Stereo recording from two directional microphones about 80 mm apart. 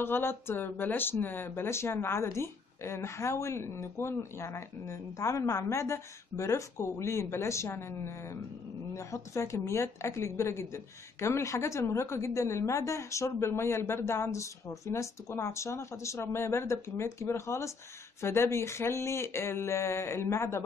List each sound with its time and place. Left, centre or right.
0.0 s speech: left